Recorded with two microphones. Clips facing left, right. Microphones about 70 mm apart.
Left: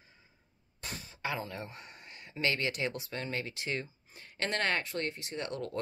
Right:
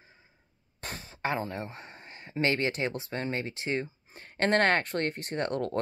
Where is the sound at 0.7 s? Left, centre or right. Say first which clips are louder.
Right 3 dB; right.